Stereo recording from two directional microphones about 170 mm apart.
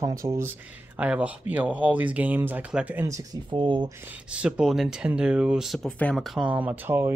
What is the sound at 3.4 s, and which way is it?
Speech, 30° right (ahead or behind).